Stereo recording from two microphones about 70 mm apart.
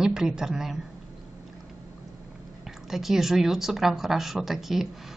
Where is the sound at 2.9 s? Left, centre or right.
Centre.